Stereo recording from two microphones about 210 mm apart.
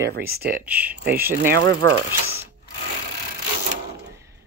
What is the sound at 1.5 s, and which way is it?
Speech, 55° right (ahead or behind).